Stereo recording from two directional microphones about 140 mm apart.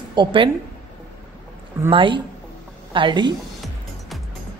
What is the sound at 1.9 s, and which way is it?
A woman's voice, 35° right (ahead or behind).